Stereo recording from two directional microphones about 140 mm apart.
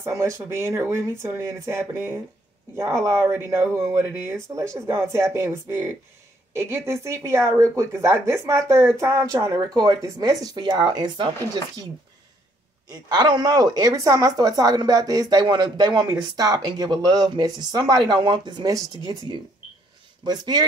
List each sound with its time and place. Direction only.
0.0 s speech: 20° right (ahead or behind)
6.5 s a woman's voice: 20° right (ahead or behind); by 11.3 s 35° right (ahead or behind)
12.9 s speech: 30° right (ahead or behind)